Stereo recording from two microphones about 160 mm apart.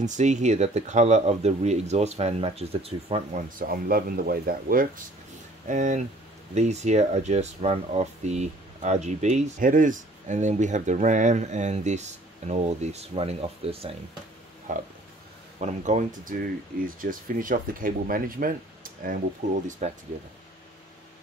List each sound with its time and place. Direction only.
0.0 s speech: 50° right (ahead or behind)
3.4 s speech: 60° right (ahead or behind)
5.7 s speech: 50° right (ahead or behind)
14.7 s speech: 50° right (ahead or behind)